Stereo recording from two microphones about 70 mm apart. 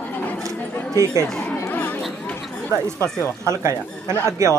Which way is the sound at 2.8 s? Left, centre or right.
Right.